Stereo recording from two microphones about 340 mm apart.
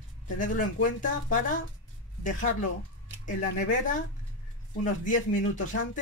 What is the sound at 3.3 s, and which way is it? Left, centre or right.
Speech, left.